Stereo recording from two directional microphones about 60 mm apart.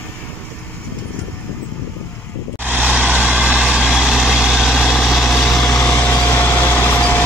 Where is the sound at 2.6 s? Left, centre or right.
Right.